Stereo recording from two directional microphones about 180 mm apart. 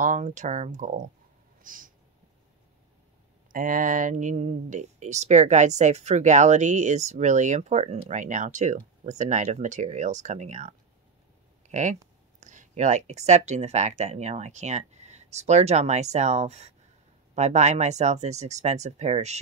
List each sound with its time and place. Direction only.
0.0 s speech: 45° right (ahead or behind)
1.6 s a sound: 50° right (ahead or behind)
3.5 s speech: 50° right (ahead or behind)